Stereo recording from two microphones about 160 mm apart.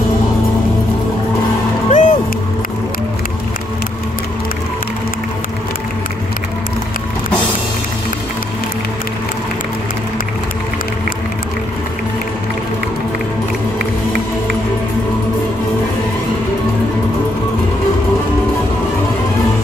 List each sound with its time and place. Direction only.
1.9 s music: 50° left (ahead or behind)